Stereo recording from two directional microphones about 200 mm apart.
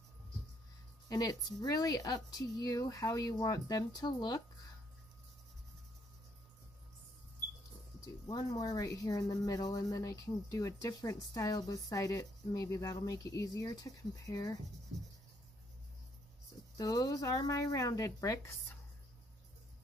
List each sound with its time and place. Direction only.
1.0 s rub: 20° left (ahead or behind)
8.3 s rub: 20° left (ahead or behind)
16.7 s rub: 20° left (ahead or behind)